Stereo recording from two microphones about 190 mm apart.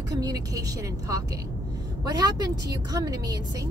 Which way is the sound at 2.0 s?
20° right (ahead or behind).